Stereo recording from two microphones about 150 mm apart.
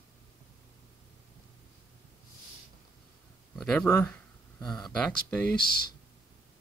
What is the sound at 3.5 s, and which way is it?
Speech, 5° left (ahead or behind).